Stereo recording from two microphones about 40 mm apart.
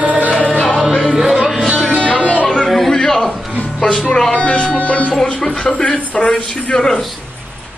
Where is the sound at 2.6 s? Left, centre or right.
Centre.